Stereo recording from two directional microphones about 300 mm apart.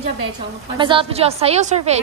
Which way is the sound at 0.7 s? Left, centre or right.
Centre.